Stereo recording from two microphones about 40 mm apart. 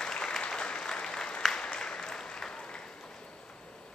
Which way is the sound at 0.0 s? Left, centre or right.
Centre.